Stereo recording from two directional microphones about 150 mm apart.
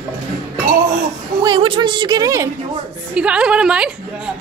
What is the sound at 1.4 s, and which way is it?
A woman's voice, 30° right (ahead or behind).